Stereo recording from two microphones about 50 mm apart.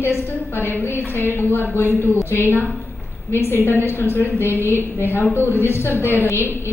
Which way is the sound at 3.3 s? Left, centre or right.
Left.